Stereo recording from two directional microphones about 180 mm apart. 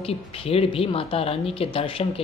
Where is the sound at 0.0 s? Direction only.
30° left (ahead or behind).